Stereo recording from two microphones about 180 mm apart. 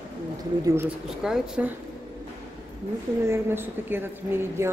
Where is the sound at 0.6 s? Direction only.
15° right (ahead or behind).